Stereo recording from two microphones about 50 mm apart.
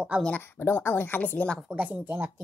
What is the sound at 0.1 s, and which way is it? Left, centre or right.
Speech, right.